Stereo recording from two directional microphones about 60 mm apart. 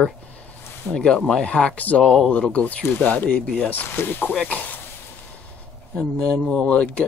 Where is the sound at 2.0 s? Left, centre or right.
Centre.